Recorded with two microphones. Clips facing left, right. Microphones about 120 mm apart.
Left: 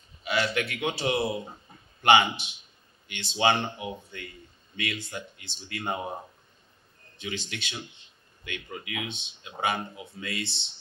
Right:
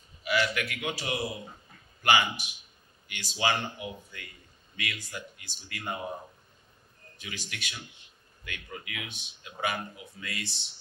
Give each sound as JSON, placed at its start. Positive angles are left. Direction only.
{"t": 0.2, "sound": "a man's voice", "side_deg": 30}
{"t": 7.2, "sound": "a man's voice", "side_deg": 25}